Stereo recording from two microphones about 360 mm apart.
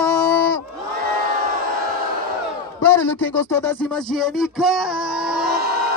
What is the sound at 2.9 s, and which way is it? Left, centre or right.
A man's voice, centre.